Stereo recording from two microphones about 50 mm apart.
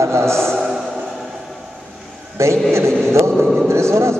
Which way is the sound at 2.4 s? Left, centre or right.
Right.